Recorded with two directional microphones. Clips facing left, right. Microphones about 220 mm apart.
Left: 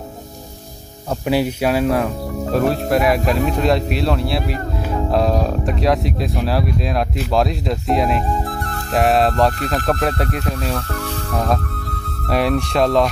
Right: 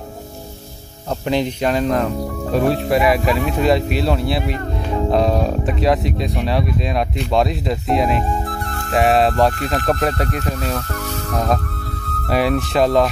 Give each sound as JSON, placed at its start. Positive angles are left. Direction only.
{"t": 1.2, "sound": "speech", "side_deg": 5}
{"t": 3.3, "sound": "speech", "side_deg": 40}
{"t": 3.5, "sound": "speech", "side_deg": 0}